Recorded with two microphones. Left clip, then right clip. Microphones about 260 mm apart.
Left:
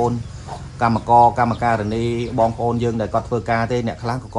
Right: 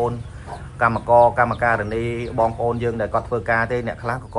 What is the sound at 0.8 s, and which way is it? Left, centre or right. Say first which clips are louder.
Speech: left 1 dB; centre.